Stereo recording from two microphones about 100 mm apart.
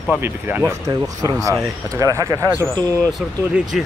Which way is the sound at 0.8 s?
35° right (ahead or behind).